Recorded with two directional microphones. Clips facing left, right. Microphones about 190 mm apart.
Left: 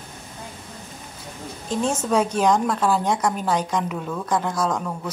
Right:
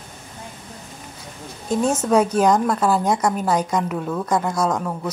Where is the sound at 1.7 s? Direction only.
5° right (ahead or behind).